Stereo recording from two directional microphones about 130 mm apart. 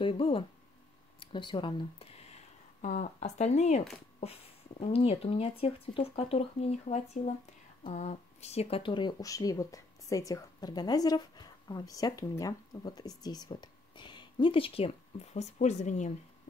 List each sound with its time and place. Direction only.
0.0 s speech: 45° left (ahead or behind)
2.8 s speech: 70° left (ahead or behind); by 14.9 s 45° left (ahead or behind)
15.3 s speech: 60° left (ahead or behind)